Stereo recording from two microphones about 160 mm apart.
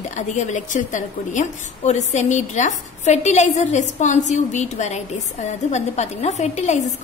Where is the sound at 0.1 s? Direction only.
50° left (ahead or behind).